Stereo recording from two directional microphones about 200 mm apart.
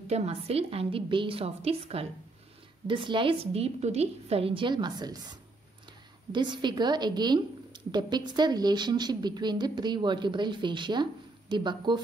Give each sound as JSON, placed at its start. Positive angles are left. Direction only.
{"t": 0.1, "sound": "a woman's voice", "side_deg": -30}
{"t": 6.3, "sound": "a woman's voice", "side_deg": -20}